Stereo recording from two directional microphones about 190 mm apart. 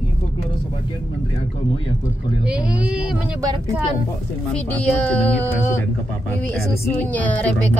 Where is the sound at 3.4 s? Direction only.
15° right (ahead or behind).